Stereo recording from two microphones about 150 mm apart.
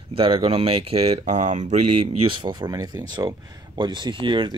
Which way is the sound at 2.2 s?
35° right (ahead or behind).